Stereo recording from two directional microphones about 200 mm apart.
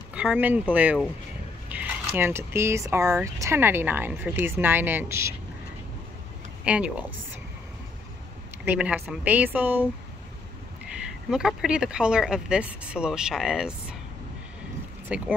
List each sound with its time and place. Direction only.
0.1 s speech: 5° right (ahead or behind)
6.6 s speech: 5° right (ahead or behind)
8.6 s speech: 5° right (ahead or behind)
11.2 s speech: 5° right (ahead or behind)
15.0 s speech: 5° right (ahead or behind)